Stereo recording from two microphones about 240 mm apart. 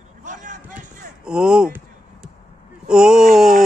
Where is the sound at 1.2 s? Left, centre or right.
Centre.